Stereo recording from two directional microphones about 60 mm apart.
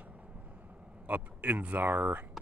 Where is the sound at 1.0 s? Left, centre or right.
Right.